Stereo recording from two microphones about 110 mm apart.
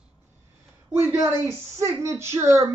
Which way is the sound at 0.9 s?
25° right (ahead or behind).